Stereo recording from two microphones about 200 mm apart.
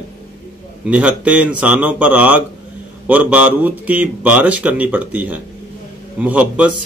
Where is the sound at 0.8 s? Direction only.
5° right (ahead or behind).